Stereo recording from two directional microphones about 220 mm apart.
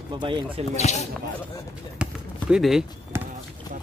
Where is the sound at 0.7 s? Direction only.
30° left (ahead or behind).